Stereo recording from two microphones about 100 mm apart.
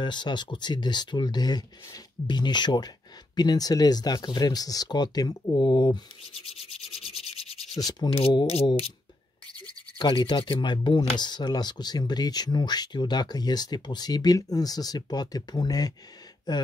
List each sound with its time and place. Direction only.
0.0 s speech: 50° left (ahead or behind)
5.6 s speech: 50° left (ahead or behind)
6.4 s rub: 75° left (ahead or behind)
7.7 s speech: 40° left (ahead or behind)
9.9 s speech: 55° left (ahead or behind)